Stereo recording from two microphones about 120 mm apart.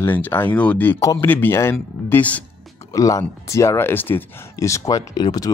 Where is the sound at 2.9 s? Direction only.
30° left (ahead or behind).